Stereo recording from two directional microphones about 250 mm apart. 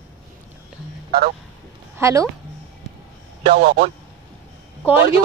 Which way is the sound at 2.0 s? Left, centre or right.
Centre.